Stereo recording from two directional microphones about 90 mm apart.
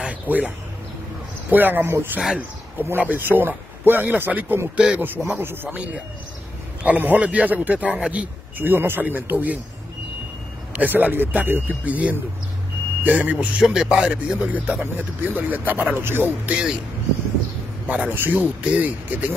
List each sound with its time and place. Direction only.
0.0 s a sound: 10° right (ahead or behind)
1.5 s speech: 20° right (ahead or behind)
2.1 s speech: 5° right (ahead or behind)
3.0 s a man's voice: 20° right (ahead or behind)
10.7 s a man's voice: 20° right (ahead or behind)
17.8 s a man's voice: 15° right (ahead or behind)